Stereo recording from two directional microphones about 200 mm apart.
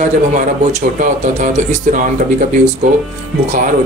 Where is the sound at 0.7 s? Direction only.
35° right (ahead or behind).